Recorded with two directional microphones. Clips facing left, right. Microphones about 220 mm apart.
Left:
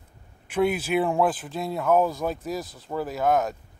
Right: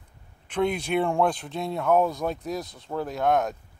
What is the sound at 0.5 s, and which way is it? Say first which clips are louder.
Speech: left 2 dB; 5° left (ahead or behind).